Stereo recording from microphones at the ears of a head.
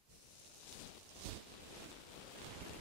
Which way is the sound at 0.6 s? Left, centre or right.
Left.